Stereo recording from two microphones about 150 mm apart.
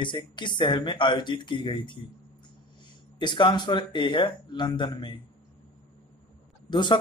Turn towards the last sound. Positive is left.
turn(degrees=30)  # may be behind; listen again after turning